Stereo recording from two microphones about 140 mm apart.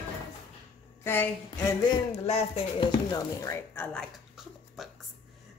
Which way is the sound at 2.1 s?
50° left (ahead or behind).